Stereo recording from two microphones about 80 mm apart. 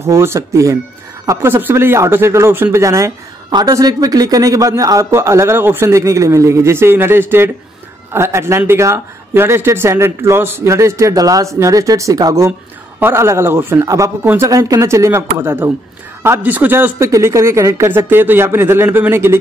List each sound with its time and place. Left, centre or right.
0.0 s a woman's voice: right
1.5 s speech: right
2.8 s speech: right
3.4 s a woman's voice: right
3.7 s speech: right
11.1 s speech: right
13.0 s speech: right
13.8 s speech: right
14.2 s speech: right
14.5 s speech: right
17.0 s speech: right